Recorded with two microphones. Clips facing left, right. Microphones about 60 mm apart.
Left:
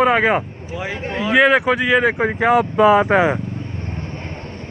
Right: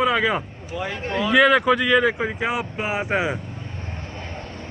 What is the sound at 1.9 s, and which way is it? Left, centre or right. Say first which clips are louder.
Speech: left 2 dB; left.